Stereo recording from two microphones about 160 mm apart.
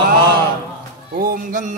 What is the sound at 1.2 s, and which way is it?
Speech, 60° right (ahead or behind).